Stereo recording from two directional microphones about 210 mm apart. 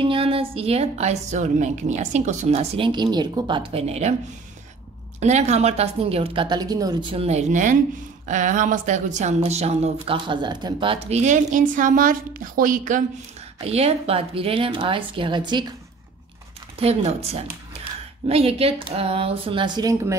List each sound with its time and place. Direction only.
0.0 s a woman's voice: 25° right (ahead or behind)
5.2 s a woman's voice: 30° right (ahead or behind)
16.7 s a woman's voice: 30° right (ahead or behind)